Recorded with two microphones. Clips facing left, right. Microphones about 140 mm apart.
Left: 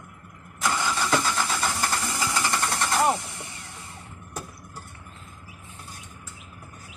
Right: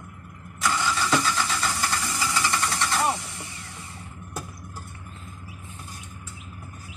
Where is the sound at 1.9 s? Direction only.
45° left (ahead or behind).